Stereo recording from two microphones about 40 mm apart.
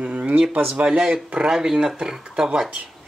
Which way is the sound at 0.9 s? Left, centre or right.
Centre.